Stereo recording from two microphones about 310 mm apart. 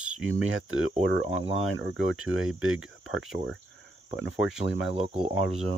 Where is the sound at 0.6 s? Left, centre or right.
Right.